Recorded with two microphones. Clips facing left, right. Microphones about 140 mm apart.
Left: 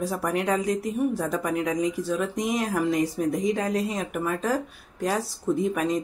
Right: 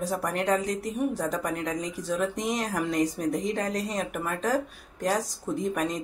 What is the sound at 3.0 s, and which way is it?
Speech, 40° right (ahead or behind).